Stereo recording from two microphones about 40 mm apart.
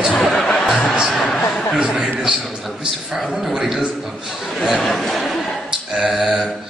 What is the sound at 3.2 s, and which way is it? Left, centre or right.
Speech, centre.